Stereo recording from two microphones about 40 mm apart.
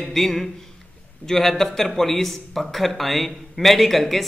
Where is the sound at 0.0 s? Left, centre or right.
Centre.